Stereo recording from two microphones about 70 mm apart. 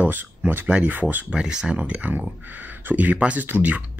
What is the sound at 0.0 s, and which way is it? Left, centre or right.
Speech, right.